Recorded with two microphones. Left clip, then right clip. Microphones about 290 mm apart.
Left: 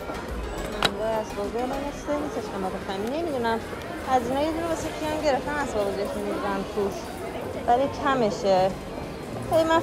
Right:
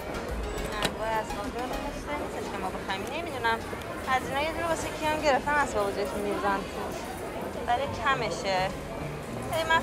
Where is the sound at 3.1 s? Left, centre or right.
Centre.